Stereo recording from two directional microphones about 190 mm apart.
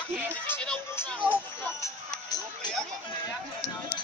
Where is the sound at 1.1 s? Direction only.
5° right (ahead or behind).